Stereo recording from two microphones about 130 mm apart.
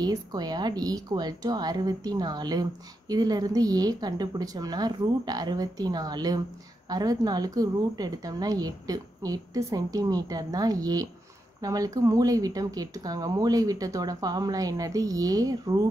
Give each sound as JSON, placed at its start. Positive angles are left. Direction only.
{"t": 0.0, "sound": "a woman's voice", "side_deg": -30}